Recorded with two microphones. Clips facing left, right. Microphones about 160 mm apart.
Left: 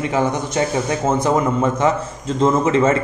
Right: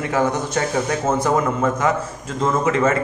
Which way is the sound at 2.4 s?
25° left (ahead or behind).